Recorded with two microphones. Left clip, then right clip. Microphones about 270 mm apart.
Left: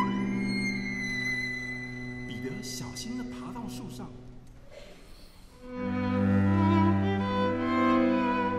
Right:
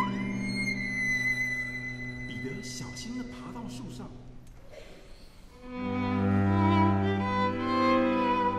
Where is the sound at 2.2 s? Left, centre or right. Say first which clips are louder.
Even; left.